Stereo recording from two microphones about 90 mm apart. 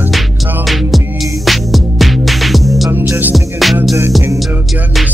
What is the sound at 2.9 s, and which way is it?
Music, 25° right (ahead or behind).